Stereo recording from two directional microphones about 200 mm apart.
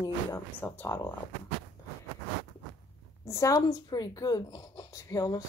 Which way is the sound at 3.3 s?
15° left (ahead or behind).